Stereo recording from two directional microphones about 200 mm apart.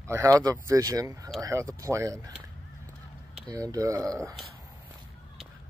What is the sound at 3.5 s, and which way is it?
Speech, 20° right (ahead or behind).